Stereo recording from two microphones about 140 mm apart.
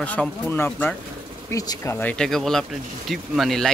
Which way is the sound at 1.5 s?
25° left (ahead or behind).